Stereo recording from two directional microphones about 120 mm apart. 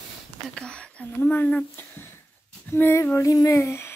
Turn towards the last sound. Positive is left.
turn(degrees=20)  # may be behind; listen again after turning